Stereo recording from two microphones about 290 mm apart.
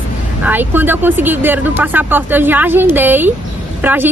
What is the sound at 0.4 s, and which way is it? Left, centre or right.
A woman's voice, centre.